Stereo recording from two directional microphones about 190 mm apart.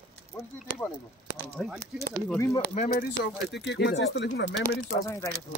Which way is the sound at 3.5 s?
65° left (ahead or behind).